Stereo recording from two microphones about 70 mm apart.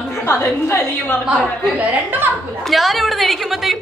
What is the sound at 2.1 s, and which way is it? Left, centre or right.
Speech, right.